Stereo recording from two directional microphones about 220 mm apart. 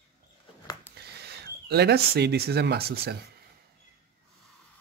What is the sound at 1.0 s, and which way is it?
Speech, 45° right (ahead or behind).